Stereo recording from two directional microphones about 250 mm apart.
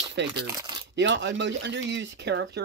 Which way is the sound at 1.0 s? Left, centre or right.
Right.